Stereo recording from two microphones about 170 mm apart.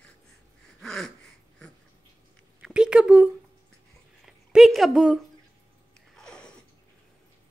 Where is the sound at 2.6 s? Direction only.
5° right (ahead or behind).